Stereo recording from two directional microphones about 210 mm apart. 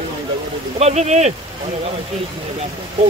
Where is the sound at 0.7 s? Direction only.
30° right (ahead or behind).